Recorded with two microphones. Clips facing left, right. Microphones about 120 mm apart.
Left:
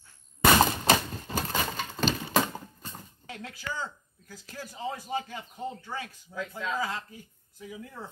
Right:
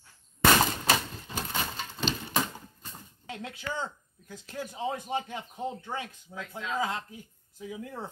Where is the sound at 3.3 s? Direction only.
25° right (ahead or behind).